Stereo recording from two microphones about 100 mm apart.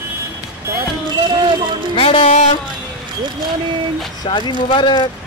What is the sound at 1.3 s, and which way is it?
Speech, 55° right (ahead or behind).